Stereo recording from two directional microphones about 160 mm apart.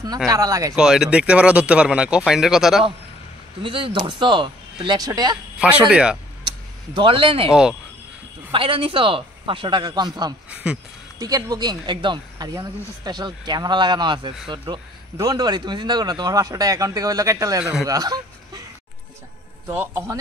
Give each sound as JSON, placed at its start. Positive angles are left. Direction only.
{"t": 0.3, "sound": "speech", "side_deg": -20}
{"t": 0.7, "sound": "speech", "side_deg": -5}
{"t": 3.6, "sound": "speech", "side_deg": -35}
{"t": 5.6, "sound": "speech", "side_deg": -5}
{"t": 6.4, "sound": "a sound", "side_deg": -30}
{"t": 8.5, "sound": "speech", "side_deg": -35}
{"t": 10.5, "sound": "speech", "side_deg": -5}
{"t": 11.1, "sound": "speech", "side_deg": -25}
{"t": 19.7, "sound": "speech", "side_deg": -15}